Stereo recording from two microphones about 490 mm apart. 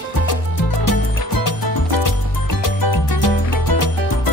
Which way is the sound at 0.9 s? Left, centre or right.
Left.